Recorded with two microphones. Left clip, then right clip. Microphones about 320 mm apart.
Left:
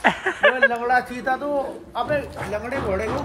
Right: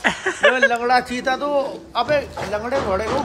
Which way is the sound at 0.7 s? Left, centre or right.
Right.